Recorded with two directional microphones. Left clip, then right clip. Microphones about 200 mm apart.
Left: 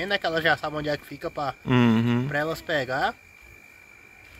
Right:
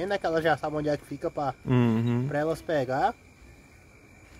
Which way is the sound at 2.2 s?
35° right (ahead or behind).